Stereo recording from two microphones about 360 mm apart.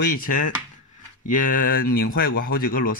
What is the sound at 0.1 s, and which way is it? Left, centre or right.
Speech, left.